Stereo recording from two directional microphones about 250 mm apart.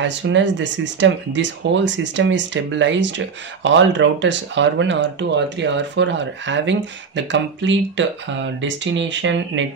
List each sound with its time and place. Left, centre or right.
0.0 s speech: right